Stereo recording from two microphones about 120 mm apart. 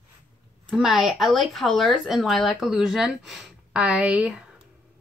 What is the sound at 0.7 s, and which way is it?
A woman's voice, 10° right (ahead or behind).